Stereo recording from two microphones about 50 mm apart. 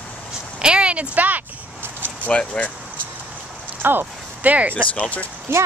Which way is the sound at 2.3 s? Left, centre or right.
Left.